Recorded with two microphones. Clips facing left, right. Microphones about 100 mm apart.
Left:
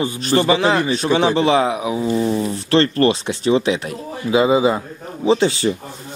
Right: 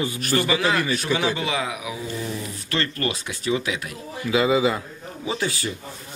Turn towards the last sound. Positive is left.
turn(degrees=25)  # may be behind; listen again after turning